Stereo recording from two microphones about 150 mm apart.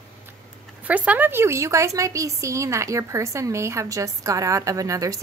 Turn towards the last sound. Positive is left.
turn(degrees=-20)  # may be behind; listen again after turning